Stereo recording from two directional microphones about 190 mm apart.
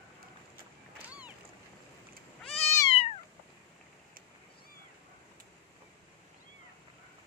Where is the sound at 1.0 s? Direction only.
10° right (ahead or behind).